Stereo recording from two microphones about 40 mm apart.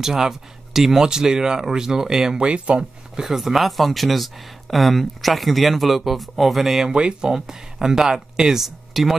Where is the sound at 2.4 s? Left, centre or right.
Right.